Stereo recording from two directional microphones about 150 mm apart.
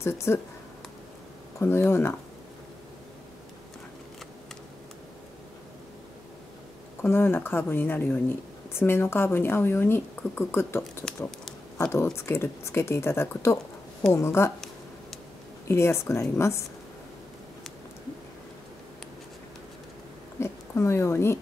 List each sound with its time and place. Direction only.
0.0 s speech: 15° left (ahead or behind)
1.6 s speech: 15° left (ahead or behind)
7.0 s speech: 15° left (ahead or behind)
11.9 s speech: 15° left (ahead or behind)
15.7 s speech: 15° left (ahead or behind)
20.3 s a sound: 15° left (ahead or behind)